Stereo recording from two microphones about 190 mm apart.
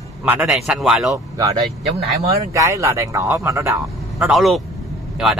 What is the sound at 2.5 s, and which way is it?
Speech, 15° right (ahead or behind).